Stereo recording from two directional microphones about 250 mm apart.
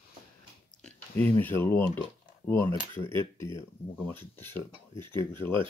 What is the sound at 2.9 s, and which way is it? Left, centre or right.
Speech, centre.